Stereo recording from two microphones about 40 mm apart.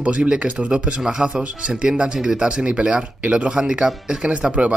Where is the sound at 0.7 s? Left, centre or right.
Right.